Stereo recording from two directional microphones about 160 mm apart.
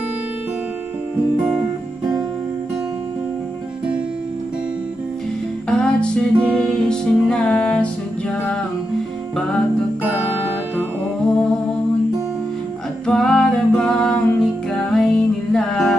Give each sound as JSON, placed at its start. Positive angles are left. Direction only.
{"t": 5.7, "sound": "music", "side_deg": 5}
{"t": 10.0, "sound": "music", "side_deg": -10}
{"t": 13.0, "sound": "music", "side_deg": 5}